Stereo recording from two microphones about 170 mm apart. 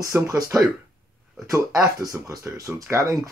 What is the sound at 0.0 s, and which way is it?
Speech, 20° right (ahead or behind).